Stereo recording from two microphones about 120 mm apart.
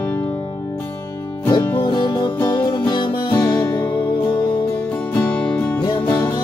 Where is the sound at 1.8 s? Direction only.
40° left (ahead or behind).